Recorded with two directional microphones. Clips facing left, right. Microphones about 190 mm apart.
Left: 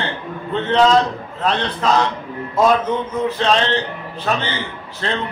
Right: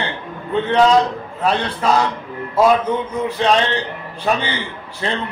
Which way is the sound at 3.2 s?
15° right (ahead or behind).